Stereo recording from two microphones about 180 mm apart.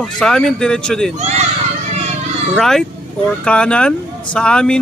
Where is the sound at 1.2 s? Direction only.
40° right (ahead or behind).